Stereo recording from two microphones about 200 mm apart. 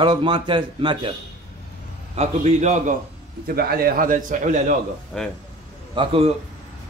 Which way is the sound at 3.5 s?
50° right (ahead or behind).